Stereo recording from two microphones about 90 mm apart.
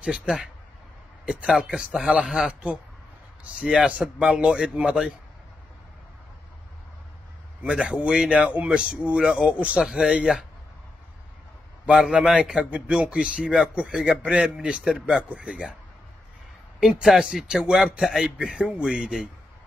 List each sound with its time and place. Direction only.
0.0 s speech: 5° right (ahead or behind)
7.6 s speech: 10° right (ahead or behind)
11.8 s speech: 10° right (ahead or behind)
17.0 s speech: 5° right (ahead or behind)